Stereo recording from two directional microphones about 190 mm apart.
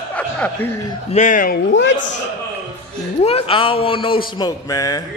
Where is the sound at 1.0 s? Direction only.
40° left (ahead or behind).